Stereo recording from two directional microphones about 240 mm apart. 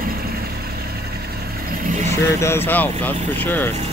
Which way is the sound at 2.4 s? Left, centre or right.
Centre.